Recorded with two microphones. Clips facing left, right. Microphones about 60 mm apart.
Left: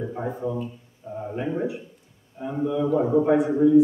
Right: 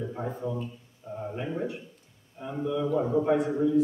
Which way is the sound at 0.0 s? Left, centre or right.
Centre.